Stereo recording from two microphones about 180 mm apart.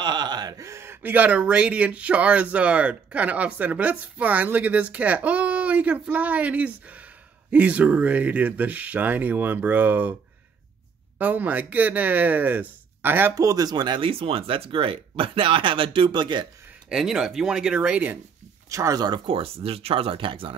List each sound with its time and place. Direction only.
0.0 s speech: 25° right (ahead or behind); by 10.1 s 10° right (ahead or behind)
11.1 s speech: 10° right (ahead or behind); by 16.4 s 25° right (ahead or behind)
16.9 s speech: 5° right (ahead or behind)
18.7 s speech: 20° right (ahead or behind)